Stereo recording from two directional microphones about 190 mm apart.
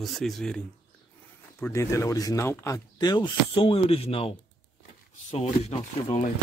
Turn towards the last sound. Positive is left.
turn(degrees=35)  # may be behind; listen again after turning